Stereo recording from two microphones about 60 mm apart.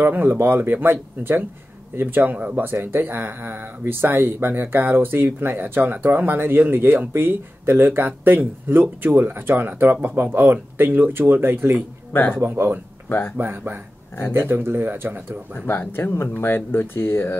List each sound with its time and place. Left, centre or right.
0.0 s speech: right
15.6 s speech: left